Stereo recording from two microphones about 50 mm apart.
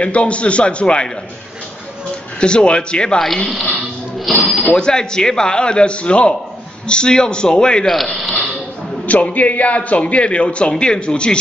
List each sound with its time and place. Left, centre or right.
0.0 s a man's voice: left
2.4 s a man's voice: centre
4.3 s speech: centre
4.6 s a man's voice: centre
7.8 s speech: centre
9.0 s a man's voice: left